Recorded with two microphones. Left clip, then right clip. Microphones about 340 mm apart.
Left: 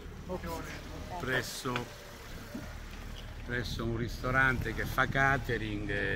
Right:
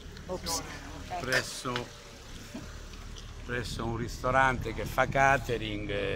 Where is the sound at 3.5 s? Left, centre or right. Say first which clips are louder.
Right 1 dB; centre.